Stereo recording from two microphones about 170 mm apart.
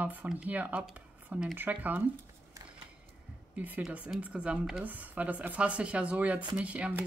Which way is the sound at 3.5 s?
10° right (ahead or behind).